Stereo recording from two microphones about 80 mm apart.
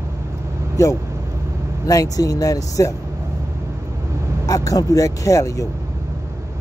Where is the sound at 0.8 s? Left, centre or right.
Left.